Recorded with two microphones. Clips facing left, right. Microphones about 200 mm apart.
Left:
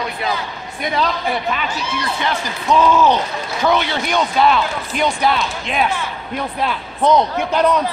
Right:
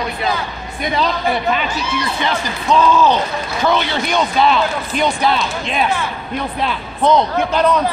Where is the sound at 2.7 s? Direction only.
20° left (ahead or behind).